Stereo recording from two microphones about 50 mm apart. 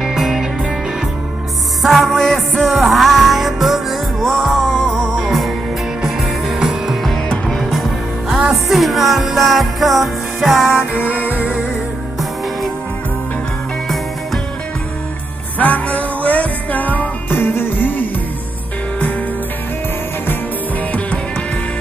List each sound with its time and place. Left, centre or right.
0.0 s music: centre
1.8 s music: centre
11.3 s music: right
15.6 s music: left